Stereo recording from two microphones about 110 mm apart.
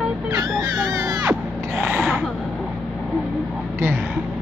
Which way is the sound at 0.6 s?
35° right (ahead or behind).